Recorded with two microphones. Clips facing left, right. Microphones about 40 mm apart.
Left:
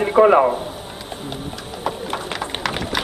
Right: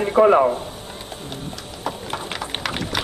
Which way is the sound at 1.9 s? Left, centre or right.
Centre.